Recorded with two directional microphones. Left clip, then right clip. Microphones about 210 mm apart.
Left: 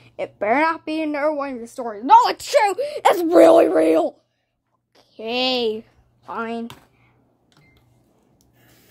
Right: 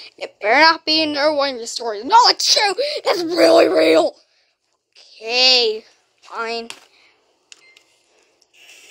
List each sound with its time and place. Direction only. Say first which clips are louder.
0.0 s a woman's voice: right 1 dB; 10° right (ahead or behind)
1.1 s a woman's voice: right 5 dB; 20° right (ahead or behind)
2.1 s a woman's voice: right 2 dB; centre (ahead or behind)
3.5 s a woman's voice: right 2 dB; centre (ahead or behind)
5.2 s speech: right 6 dB; centre (ahead or behind)